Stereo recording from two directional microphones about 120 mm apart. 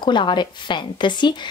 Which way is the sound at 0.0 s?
40° left (ahead or behind).